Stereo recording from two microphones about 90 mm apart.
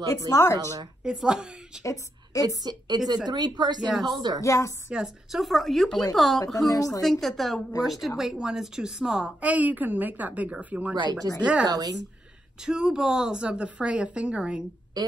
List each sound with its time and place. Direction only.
0.3 s a woman's voice: 30° left (ahead or behind)
1.0 s a woman's voice: 10° right (ahead or behind)
1.8 s a woman's voice: 40° left (ahead or behind)
2.4 s a woman's voice: 45° right (ahead or behind)
3.8 s a woman's voice: centre (ahead or behind)
4.1 s a woman's voice: 50° right (ahead or behind)
4.4 s a woman's voice: 35° left (ahead or behind)
4.9 s a woman's voice: 5° right (ahead or behind)
6.7 s a woman's voice: 40° left (ahead or behind)
7.1 s a woman's voice: centre (ahead or behind); by 11.0 s 15° right (ahead or behind)
11.3 s a woman's voice: 45° right (ahead or behind)
12.6 s a woman's voice: 5° right (ahead or behind)
15.0 s a woman's voice: 50° right (ahead or behind)